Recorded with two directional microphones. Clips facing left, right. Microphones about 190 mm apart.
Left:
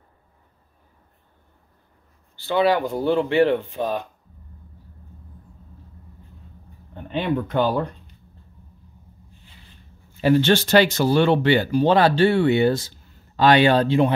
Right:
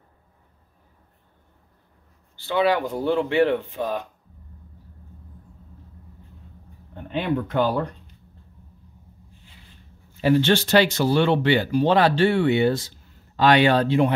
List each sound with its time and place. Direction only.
2.4 s speech: 35° left (ahead or behind)
7.1 s speech: 25° left (ahead or behind)
10.2 s speech: 45° left (ahead or behind); by 14.1 s 30° left (ahead or behind)